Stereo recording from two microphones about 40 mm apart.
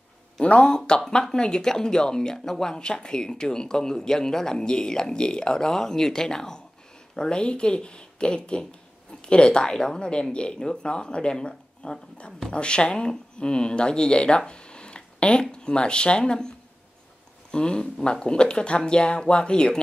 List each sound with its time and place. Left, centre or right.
0.7 s speech: centre